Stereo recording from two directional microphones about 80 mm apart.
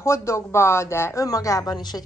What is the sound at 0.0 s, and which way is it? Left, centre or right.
Speech, left.